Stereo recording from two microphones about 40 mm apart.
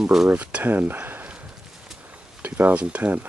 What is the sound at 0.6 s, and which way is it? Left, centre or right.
Speech, right.